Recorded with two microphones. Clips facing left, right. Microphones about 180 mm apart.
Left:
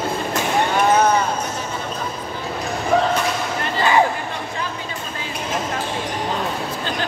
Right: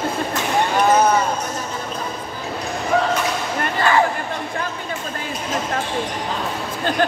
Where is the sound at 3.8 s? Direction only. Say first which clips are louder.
Left 1 dB; 20° left (ahead or behind).